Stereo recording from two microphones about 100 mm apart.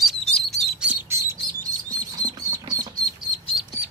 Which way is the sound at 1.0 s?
25° right (ahead or behind).